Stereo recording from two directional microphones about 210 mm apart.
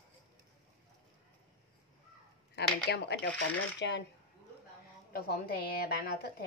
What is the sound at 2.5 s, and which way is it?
Speech, 50° left (ahead or behind).